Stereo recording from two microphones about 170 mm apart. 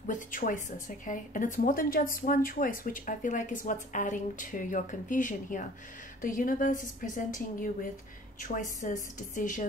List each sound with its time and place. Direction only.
0.0 s a woman's voice: 50° left (ahead or behind)